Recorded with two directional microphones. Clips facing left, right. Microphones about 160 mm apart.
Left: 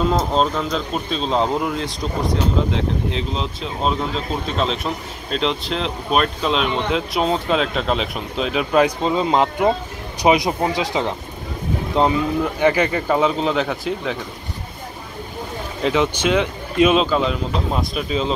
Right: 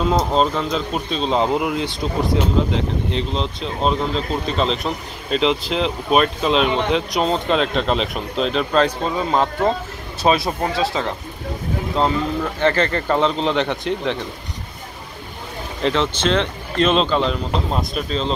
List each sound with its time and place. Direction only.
0.0 s speech: centre (ahead or behind)
15.8 s speech: 10° left (ahead or behind)